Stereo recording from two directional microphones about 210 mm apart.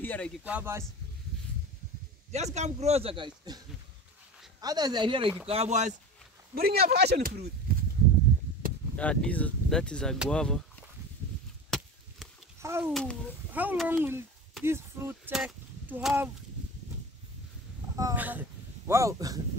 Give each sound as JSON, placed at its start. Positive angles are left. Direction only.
{"t": 0.0, "sound": "a sound", "side_deg": 10}
{"t": 0.4, "sound": "a child's voice", "side_deg": -5}
{"t": 2.3, "sound": "speech", "side_deg": -30}
{"t": 6.5, "sound": "speech", "side_deg": -45}
{"t": 7.7, "sound": "a sound", "side_deg": -45}
{"t": 8.9, "sound": "speech", "side_deg": 5}
{"t": 12.5, "sound": "a child's voice", "side_deg": -10}
{"t": 12.9, "sound": "speech", "side_deg": 5}
{"t": 13.5, "sound": "a child's voice", "side_deg": -10}
{"t": 17.9, "sound": "speech", "side_deg": -10}